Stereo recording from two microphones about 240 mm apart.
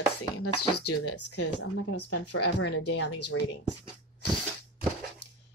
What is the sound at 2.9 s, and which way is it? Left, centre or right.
Speech, left.